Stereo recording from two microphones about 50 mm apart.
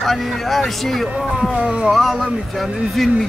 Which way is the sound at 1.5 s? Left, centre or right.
Right.